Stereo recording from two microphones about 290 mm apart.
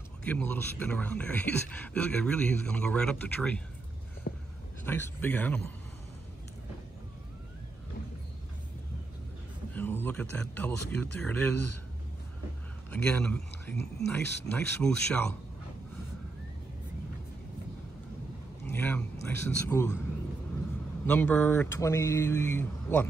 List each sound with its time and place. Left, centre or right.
0.2 s speech: centre
4.2 s a sound: left
4.8 s speech: centre
9.8 s speech: centre
12.9 s speech: centre
18.6 s a man's voice: centre
21.1 s speech: centre